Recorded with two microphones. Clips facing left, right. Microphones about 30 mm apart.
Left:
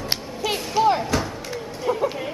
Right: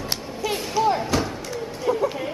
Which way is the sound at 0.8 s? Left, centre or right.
Left.